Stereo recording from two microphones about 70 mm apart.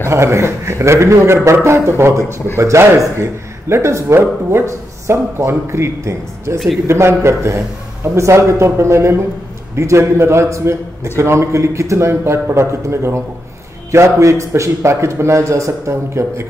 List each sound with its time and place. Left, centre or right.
0.0 s a man's voice: right